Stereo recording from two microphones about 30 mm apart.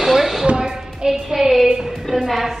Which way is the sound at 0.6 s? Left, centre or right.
Centre.